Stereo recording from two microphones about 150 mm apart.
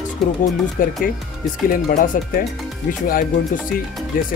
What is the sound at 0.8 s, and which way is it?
Speech, 65° left (ahead or behind).